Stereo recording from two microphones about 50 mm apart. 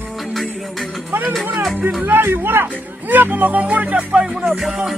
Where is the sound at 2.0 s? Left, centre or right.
Right.